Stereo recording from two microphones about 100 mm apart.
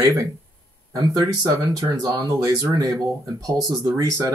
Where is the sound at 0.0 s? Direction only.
30° right (ahead or behind).